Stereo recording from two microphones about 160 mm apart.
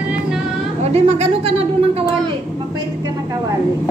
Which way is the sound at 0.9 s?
40° right (ahead or behind).